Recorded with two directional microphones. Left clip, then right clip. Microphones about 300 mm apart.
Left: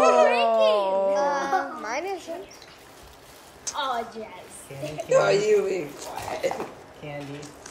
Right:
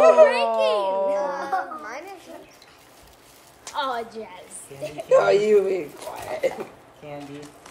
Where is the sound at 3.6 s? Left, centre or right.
Right.